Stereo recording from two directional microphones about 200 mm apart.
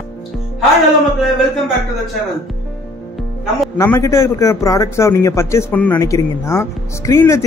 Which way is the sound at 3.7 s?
15° left (ahead or behind).